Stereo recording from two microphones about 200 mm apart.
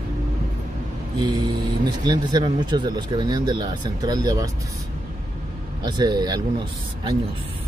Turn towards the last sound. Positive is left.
turn(degrees=-20)  # may be behind; listen again after turning